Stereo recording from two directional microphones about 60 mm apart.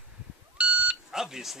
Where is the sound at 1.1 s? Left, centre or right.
Centre.